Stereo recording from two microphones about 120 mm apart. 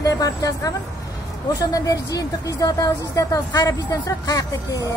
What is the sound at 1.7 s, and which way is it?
Speech, 30° left (ahead or behind).